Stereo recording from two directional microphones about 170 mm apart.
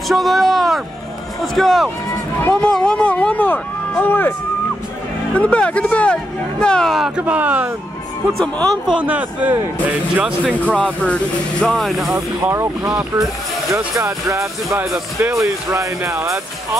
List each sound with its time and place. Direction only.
0.1 s speech: centre (ahead or behind)
5.3 s speech: 5° left (ahead or behind); by 7.7 s 10° right (ahead or behind)
8.3 s speech: centre (ahead or behind)
10.8 s speech: 5° left (ahead or behind)
12.4 s speech: 15° right (ahead or behind)
13.9 s speech: 20° right (ahead or behind)
14.9 s speech: centre (ahead or behind)
15.4 s speech: 20° right (ahead or behind)